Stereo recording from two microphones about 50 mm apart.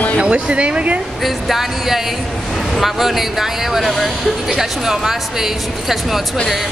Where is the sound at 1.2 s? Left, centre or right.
Centre.